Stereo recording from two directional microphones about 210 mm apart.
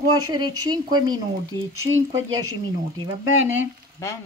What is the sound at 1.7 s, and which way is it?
Speech, 75° right (ahead or behind).